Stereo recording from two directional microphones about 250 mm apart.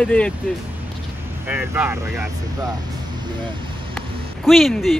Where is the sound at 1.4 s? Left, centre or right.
Centre.